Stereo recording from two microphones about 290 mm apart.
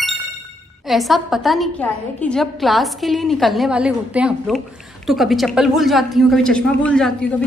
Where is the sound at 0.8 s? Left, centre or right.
Centre.